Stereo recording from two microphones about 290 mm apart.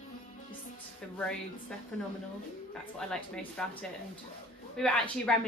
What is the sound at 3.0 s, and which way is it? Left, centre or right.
Speech, centre.